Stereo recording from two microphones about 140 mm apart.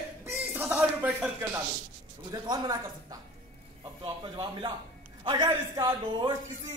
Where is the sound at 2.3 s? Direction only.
25° right (ahead or behind).